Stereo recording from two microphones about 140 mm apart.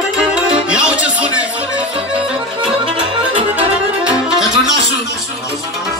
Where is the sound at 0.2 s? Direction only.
5° right (ahead or behind).